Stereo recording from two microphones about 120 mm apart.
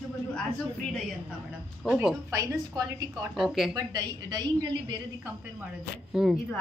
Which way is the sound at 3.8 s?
35° right (ahead or behind).